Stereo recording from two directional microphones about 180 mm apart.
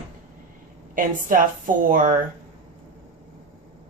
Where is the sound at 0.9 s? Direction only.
50° right (ahead or behind).